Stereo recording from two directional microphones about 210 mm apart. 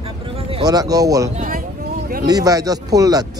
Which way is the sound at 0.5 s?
20° right (ahead or behind).